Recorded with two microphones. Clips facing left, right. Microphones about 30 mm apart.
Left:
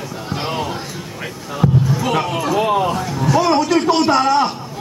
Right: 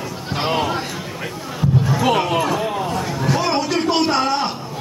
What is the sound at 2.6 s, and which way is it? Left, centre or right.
Speech, left.